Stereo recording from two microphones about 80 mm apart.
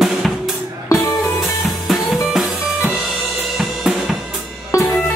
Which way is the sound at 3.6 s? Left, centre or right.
Centre.